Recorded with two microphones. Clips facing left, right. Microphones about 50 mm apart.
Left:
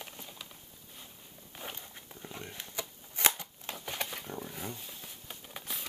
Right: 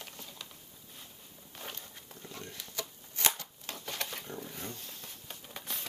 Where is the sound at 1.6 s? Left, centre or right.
Centre.